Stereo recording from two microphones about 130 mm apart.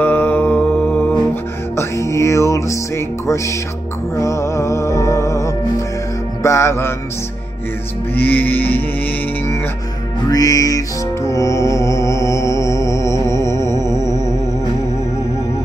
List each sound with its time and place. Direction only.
0.0 s mantra: 15° left (ahead or behind)
1.8 s music: 25° left (ahead or behind)
4.2 s music: 20° left (ahead or behind)
8.2 s music: 15° left (ahead or behind)
10.3 s music: 25° left (ahead or behind)